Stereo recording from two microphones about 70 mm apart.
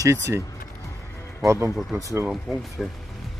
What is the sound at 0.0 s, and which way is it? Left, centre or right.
Speech, right.